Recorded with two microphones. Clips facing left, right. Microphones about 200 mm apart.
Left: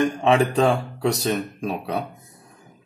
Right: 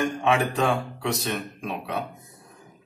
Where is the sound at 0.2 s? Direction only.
35° left (ahead or behind).